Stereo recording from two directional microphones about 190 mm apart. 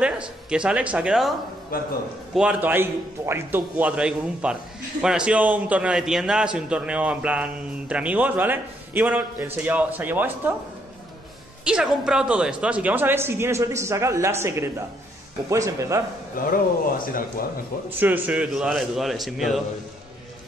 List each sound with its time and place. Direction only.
0.0 s a man's voice: 5° right (ahead or behind)
1.7 s a man's voice: 50° left (ahead or behind)
2.3 s a man's voice: 10° right (ahead or behind)
11.6 s a man's voice: 5° right (ahead or behind)
16.4 s a man's voice: 50° left (ahead or behind)
17.8 s a man's voice: 10° right (ahead or behind)